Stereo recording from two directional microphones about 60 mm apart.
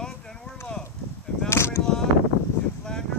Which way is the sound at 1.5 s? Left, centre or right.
Left.